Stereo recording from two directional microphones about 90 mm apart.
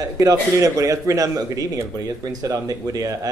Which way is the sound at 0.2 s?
40° right (ahead or behind).